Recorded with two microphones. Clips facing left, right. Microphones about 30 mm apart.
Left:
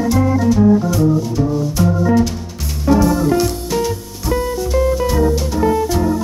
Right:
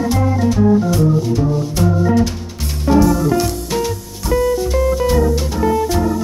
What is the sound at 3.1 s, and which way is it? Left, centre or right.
Music, centre.